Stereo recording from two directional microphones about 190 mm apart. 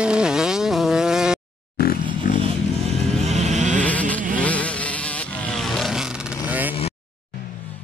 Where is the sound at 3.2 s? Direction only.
35° right (ahead or behind).